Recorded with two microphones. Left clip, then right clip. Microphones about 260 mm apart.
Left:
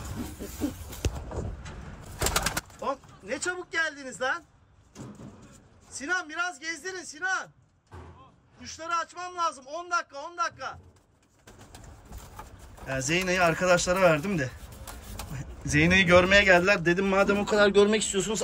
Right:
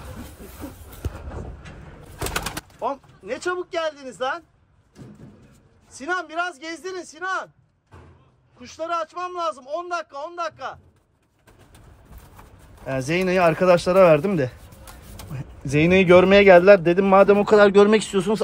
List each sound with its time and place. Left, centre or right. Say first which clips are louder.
2.8 s a man's voice: right 9 dB; centre
5.9 s a man's voice: right 4 dB; centre
8.5 s a man's voice: right 4 dB; centre
12.8 s a man's voice: right 5 dB; centre